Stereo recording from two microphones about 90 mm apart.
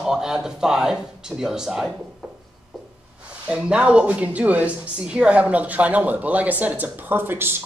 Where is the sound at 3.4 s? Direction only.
15° right (ahead or behind).